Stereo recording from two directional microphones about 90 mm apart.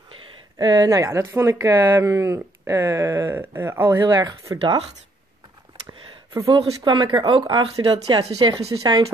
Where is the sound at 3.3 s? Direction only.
25° right (ahead or behind).